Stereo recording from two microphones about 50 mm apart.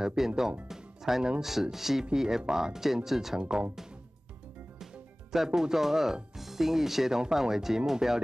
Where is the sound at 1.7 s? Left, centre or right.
Centre.